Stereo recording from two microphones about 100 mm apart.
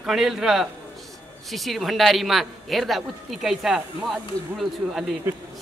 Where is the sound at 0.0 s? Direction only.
5° right (ahead or behind).